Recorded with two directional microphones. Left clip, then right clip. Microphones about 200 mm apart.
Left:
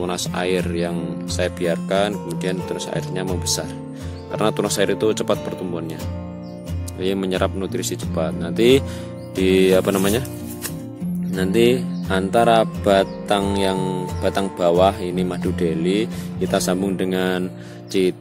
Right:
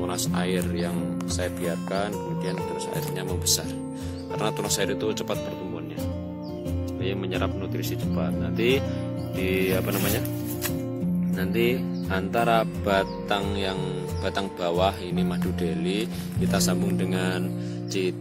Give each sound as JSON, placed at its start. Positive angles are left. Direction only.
{"t": 0.0, "sound": "music", "side_deg": 40}
{"t": 4.4, "sound": "music", "side_deg": 45}
{"t": 7.0, "sound": "speech", "side_deg": 55}
{"t": 9.4, "sound": "music", "side_deg": 55}
{"t": 11.3, "sound": "music", "side_deg": 45}